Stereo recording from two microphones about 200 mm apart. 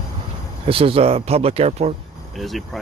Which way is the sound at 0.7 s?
30° right (ahead or behind).